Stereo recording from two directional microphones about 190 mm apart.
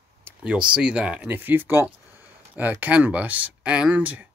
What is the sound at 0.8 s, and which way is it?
Speech, 5° right (ahead or behind).